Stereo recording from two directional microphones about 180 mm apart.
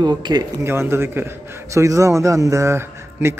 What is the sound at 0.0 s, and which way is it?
A man's voice, 25° right (ahead or behind).